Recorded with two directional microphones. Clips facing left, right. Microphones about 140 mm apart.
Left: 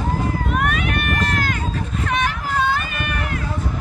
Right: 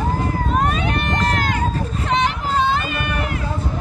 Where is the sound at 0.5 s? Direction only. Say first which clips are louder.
Right 3 dB; 30° right (ahead or behind).